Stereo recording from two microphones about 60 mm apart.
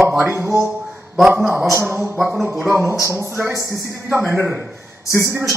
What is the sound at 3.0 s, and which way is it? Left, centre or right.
Speech, right.